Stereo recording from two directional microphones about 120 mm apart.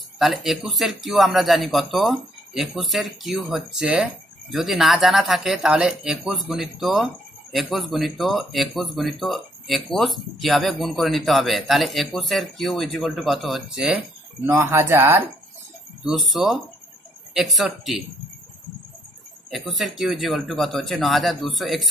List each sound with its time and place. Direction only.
0.2 s speech: centre (ahead or behind)
14.4 s speech: 20° right (ahead or behind)
16.0 s speech: centre (ahead or behind)
19.5 s speech: centre (ahead or behind)